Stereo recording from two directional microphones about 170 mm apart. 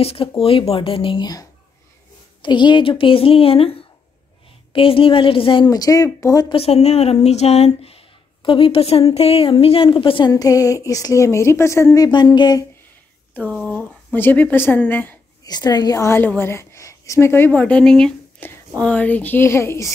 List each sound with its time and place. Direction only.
0.0 s a woman's voice: 35° left (ahead or behind)
6.5 s a woman's voice: 35° left (ahead or behind)
13.3 s speech: 5° left (ahead or behind)
15.4 s a woman's voice: 25° left (ahead or behind)